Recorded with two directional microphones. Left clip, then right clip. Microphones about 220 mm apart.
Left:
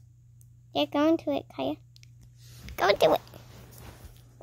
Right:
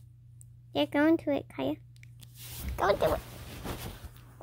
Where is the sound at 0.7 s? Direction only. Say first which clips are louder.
Left 1 dB; 5° left (ahead or behind).